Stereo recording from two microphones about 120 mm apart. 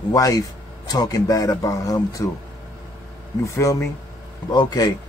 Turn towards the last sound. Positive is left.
turn(degrees=35)  # may be behind; listen again after turning